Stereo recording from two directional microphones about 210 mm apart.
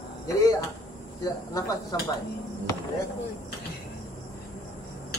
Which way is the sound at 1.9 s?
20° left (ahead or behind).